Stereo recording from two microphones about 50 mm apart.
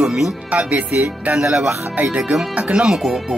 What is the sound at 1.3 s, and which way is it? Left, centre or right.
Speech, centre.